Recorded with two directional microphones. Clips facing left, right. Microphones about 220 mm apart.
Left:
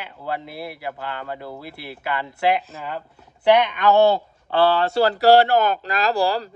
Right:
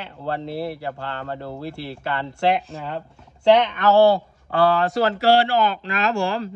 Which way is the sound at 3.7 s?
20° left (ahead or behind).